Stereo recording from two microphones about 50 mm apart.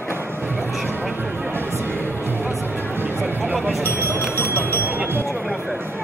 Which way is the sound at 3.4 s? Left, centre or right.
Right.